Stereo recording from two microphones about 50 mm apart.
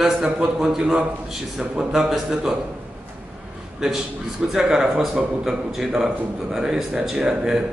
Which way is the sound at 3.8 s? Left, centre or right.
Centre.